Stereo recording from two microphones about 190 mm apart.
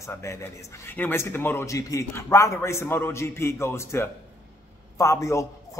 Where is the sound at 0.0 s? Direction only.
15° left (ahead or behind).